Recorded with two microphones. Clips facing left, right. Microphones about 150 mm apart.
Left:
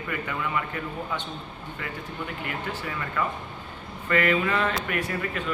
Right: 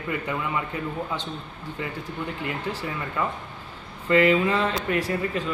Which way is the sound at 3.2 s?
25° right (ahead or behind).